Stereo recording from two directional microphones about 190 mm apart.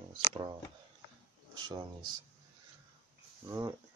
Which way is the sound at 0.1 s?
25° right (ahead or behind).